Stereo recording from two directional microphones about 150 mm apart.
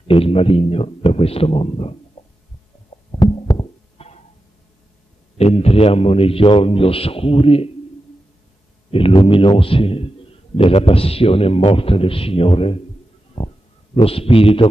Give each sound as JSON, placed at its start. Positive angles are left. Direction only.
{"t": 0.1, "sound": "a man's voice", "side_deg": 40}
{"t": 3.1, "sound": "heart sounds", "side_deg": 30}
{"t": 5.4, "sound": "a man's voice", "side_deg": 45}
{"t": 8.9, "sound": "a man's voice", "side_deg": 40}
{"t": 13.4, "sound": "a sound", "side_deg": 40}
{"t": 14.0, "sound": "a man's voice", "side_deg": 40}